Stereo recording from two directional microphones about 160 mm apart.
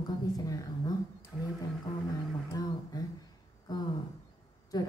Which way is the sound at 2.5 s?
25° left (ahead or behind).